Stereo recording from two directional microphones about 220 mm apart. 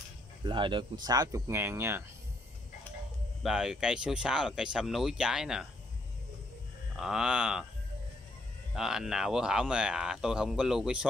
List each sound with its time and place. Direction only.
0.4 s speech: 20° right (ahead or behind)
3.4 s speech: 5° right (ahead or behind)
7.0 s speech: centre (ahead or behind)
8.7 s speech: centre (ahead or behind)